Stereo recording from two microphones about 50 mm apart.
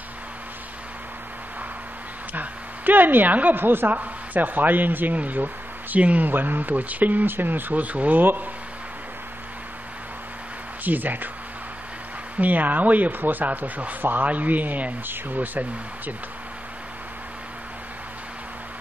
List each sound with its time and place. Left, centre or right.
2.3 s a woman's voice: right
10.8 s a woman's voice: right
12.4 s a woman's voice: right